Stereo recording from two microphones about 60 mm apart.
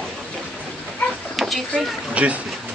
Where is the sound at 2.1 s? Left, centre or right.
Right.